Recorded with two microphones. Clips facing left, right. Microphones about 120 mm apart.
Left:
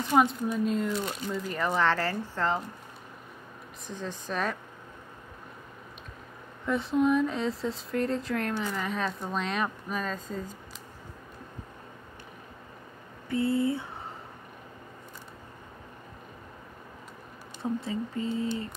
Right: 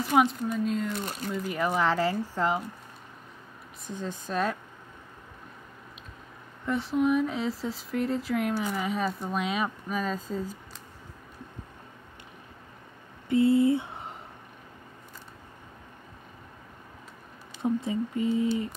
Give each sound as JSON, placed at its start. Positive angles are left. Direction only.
{"t": 0.1, "sound": "speech", "side_deg": 0}
{"t": 4.0, "sound": "speech", "side_deg": -5}
{"t": 6.6, "sound": "speech", "side_deg": 0}
{"t": 13.3, "sound": "speech", "side_deg": -20}
{"t": 17.6, "sound": "speech", "side_deg": -20}